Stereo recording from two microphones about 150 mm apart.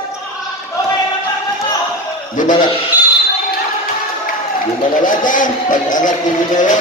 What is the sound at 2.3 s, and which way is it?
Bleat, 60° left (ahead or behind).